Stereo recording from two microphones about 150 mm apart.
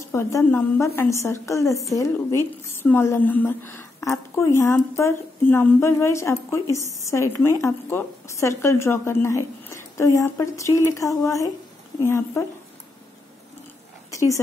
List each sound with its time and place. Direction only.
0.1 s a woman's voice: 20° left (ahead or behind)